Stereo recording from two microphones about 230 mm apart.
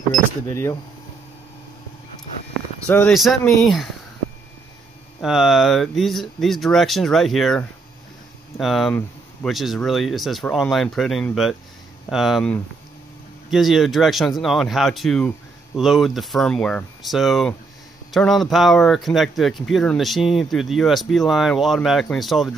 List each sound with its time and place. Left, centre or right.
0.5 s speech: centre
2.9 s speech: centre
5.2 s speech: centre